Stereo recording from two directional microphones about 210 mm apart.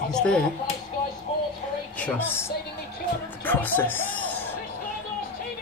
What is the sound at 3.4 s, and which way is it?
Music, 10° left (ahead or behind).